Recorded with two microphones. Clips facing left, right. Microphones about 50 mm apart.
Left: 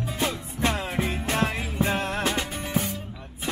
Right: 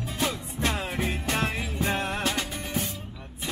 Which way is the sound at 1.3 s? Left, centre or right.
Centre.